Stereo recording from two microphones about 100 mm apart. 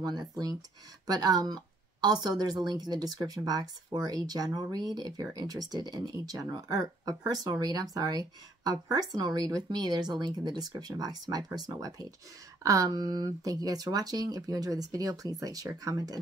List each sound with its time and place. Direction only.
0.0 s a woman's voice: 45° right (ahead or behind)